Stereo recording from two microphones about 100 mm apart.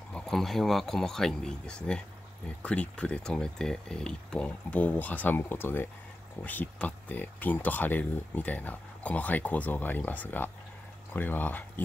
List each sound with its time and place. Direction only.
0.1 s speech: 5° left (ahead or behind)